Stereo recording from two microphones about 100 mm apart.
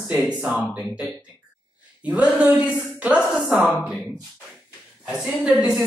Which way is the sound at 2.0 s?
15° right (ahead or behind).